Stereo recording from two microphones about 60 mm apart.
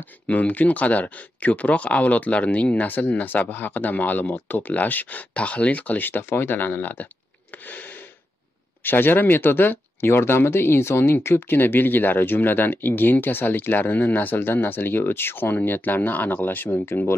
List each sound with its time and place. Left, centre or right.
0.0 s speech: left
7.5 s a sound: left
8.8 s speech: left